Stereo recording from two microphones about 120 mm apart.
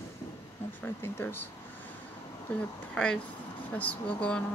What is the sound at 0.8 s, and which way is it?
Speech, 15° left (ahead or behind).